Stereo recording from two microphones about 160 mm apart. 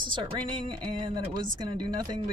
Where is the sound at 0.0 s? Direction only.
30° right (ahead or behind).